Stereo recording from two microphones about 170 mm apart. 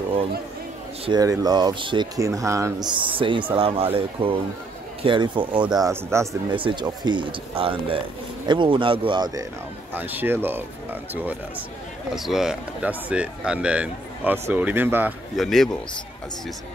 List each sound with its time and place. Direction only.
1.0 s speech: 20° right (ahead or behind)
6.5 s speech: 30° right (ahead or behind)
9.9 s speech: 10° right (ahead or behind)
15.3 s speech: centre (ahead or behind)